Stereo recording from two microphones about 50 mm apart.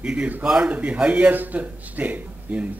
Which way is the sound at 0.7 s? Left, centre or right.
Right.